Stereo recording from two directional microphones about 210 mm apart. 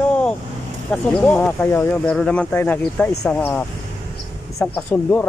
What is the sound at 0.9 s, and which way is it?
Speech, 5° left (ahead or behind).